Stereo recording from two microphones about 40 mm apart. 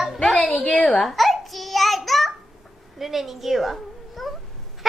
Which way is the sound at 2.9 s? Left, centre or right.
Centre.